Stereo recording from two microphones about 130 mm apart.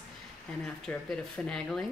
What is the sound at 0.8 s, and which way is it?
Speech, 5° left (ahead or behind).